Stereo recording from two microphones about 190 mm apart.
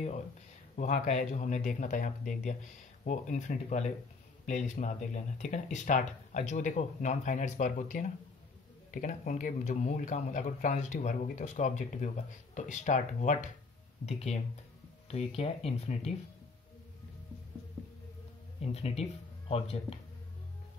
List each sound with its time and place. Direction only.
0.7 s speech: 40° left (ahead or behind)
18.6 s speech: 30° left (ahead or behind)